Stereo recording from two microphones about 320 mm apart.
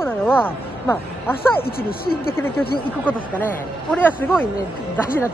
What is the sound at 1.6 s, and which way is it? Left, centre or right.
Speech, left.